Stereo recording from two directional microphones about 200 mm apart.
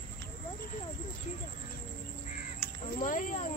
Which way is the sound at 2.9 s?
40° left (ahead or behind).